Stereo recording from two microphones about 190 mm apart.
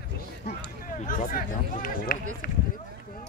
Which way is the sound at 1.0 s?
45° left (ahead or behind).